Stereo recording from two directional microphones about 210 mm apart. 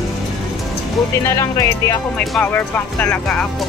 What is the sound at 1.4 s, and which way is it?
Speech, 15° left (ahead or behind).